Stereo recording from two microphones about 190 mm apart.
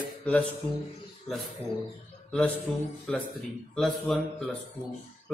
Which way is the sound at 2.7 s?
5° left (ahead or behind).